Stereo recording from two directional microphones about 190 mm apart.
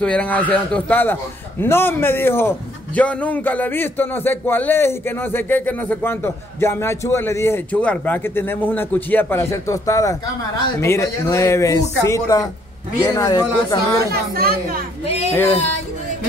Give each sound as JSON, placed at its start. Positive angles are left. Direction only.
{"t": 0.0, "sound": "a man's voice", "side_deg": 5}
{"t": 14.1, "sound": "speech", "side_deg": -55}
{"t": 15.3, "sound": "speech", "side_deg": 10}